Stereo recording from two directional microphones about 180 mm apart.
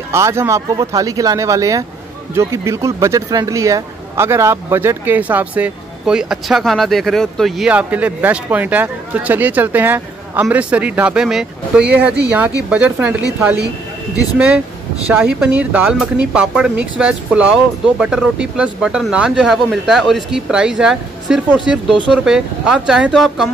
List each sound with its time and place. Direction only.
0.1 s speech: 15° right (ahead or behind)
15.0 s speech: 5° right (ahead or behind)